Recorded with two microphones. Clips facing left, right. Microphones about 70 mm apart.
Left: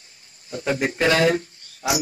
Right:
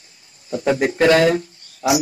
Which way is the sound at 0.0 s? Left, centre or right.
Right.